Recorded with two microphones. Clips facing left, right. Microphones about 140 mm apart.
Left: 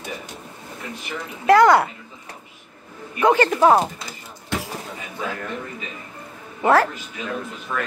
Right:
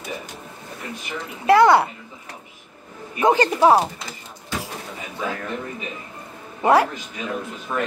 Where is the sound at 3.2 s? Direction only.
15° right (ahead or behind).